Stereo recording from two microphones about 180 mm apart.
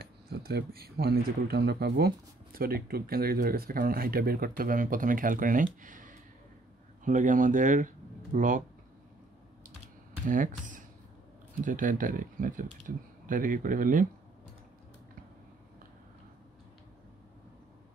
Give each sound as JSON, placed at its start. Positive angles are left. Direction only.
{"t": 0.0, "sound": "speech", "side_deg": -60}
{"t": 10.2, "sound": "speech", "side_deg": -45}